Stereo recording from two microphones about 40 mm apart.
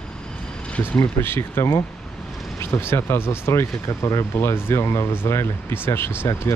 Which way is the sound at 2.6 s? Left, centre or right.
Left.